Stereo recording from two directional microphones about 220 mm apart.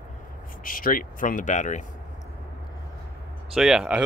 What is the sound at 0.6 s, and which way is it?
Speech, 40° left (ahead or behind).